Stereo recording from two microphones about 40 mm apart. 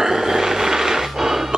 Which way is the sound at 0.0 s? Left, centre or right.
Centre.